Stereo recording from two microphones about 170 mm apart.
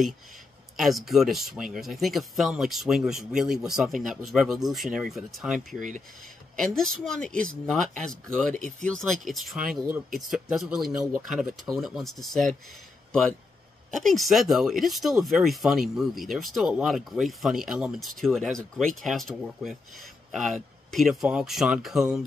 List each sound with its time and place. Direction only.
0.7 s speech: centre (ahead or behind)
5.8 s speech: 50° right (ahead or behind)
6.6 s speech: centre (ahead or behind)
13.9 s speech: centre (ahead or behind)